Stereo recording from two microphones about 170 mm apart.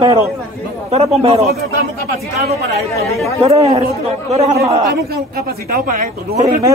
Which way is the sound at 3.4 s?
35° right (ahead or behind).